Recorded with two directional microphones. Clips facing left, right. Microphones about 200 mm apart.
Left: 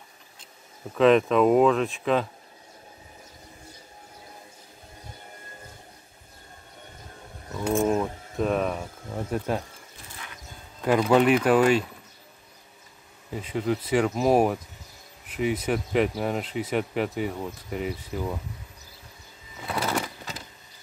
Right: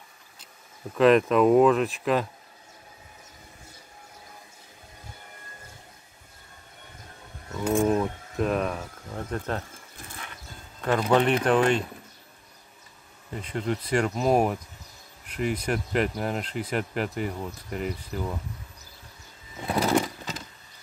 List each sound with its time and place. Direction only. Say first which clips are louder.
0.9 s speech: even; centre (ahead or behind)
7.5 s cricket: even; 5° left (ahead or behind)
10.8 s speech: left 2 dB; 10° left (ahead or behind)
13.3 s speech: left 2 dB; 5° left (ahead or behind)
19.7 s a sound: right 5 dB; 20° right (ahead or behind)